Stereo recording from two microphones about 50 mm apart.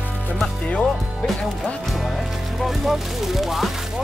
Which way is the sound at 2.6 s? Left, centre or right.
Centre.